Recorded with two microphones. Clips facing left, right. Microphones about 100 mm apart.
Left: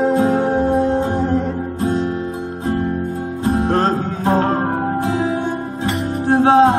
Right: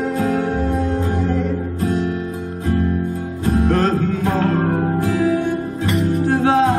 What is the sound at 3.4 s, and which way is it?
Music, 30° left (ahead or behind).